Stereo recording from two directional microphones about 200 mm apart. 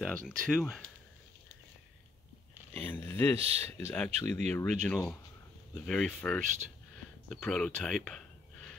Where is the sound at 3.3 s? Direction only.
30° right (ahead or behind).